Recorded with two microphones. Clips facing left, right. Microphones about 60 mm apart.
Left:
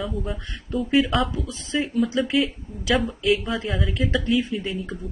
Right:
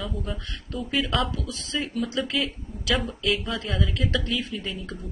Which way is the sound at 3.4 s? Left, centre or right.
Centre.